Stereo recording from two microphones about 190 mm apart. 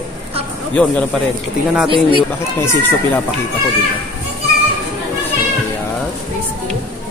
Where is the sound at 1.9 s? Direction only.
25° right (ahead or behind).